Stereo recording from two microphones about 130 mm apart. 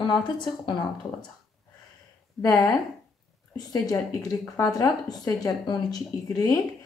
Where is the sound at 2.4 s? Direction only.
30° left (ahead or behind).